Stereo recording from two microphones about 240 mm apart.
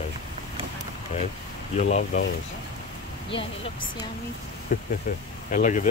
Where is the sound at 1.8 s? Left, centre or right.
Left.